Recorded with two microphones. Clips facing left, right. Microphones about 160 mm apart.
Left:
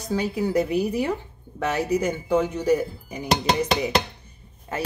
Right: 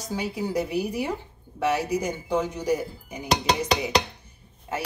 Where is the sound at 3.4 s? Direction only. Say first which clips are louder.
Left 2 dB; centre (ahead or behind).